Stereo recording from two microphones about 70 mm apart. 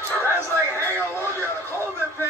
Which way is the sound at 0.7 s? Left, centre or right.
Left.